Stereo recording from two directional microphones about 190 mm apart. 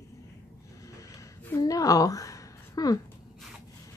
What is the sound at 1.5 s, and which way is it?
A woman's voice, 20° left (ahead or behind).